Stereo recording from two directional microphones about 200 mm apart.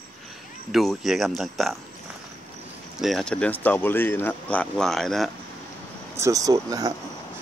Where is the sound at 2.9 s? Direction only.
Centre (ahead or behind).